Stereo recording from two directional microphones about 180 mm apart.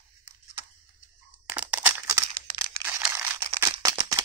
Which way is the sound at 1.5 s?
10° right (ahead or behind).